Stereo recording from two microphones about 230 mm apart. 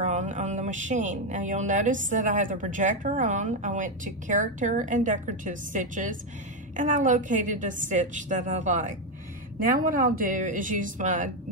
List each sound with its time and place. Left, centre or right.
0.0 s speech: right